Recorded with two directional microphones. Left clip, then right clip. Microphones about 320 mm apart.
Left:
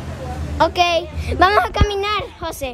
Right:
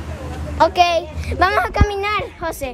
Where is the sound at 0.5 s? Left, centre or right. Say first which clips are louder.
Right 2 dB; centre.